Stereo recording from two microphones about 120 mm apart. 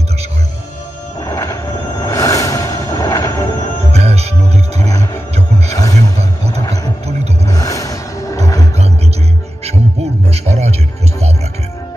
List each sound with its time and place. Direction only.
1.2 s music: 25° left (ahead or behind)
1.7 s music: 35° left (ahead or behind)
3.9 s music: 65° right (ahead or behind)
4.7 s music: 30° left (ahead or behind)
10.3 s music: 65° right (ahead or behind)